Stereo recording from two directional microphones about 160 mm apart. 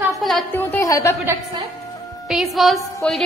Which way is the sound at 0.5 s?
15° left (ahead or behind).